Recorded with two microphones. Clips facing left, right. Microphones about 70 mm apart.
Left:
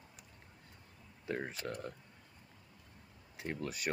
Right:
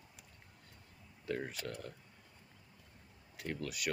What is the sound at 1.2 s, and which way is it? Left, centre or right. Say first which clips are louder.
Speech: even; left.